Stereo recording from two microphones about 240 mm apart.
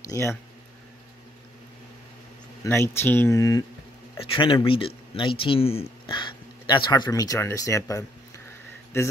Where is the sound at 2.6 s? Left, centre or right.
Centre.